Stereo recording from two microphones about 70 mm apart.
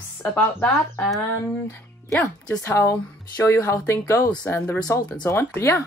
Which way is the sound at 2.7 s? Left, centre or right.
Left.